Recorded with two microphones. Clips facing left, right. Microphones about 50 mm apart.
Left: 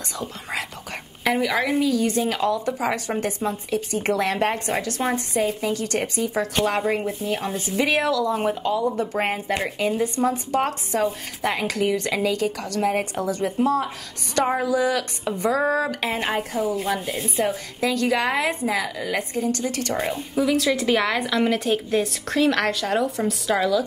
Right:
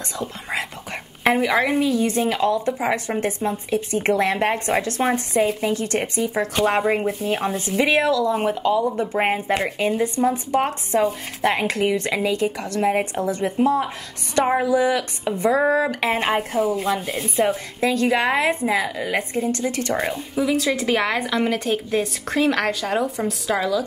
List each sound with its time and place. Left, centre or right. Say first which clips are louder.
0.2 s whispering: right 3 dB; right
1.2 s a woman's voice: right 3 dB; right
3.4 s a woman's voice: right 2 dB; right
7.2 s speech: right 3 dB; right
8.8 s a woman's voice: right 2 dB; centre
9.6 s speech: right 2 dB; centre
10.0 s a woman's voice: right 2 dB; right
11.5 s a woman's voice: right 2 dB; right
14.3 s a woman's voice: right 3 dB; centre
16.0 s speech: right 4 dB; right
16.7 s a woman's voice: right 2 dB; centre
17.7 s a woman's voice: right 2 dB; right
20.3 s a woman's voice: even; centre